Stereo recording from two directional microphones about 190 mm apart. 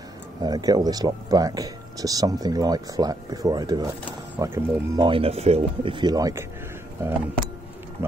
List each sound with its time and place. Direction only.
0.4 s speech: 20° right (ahead or behind)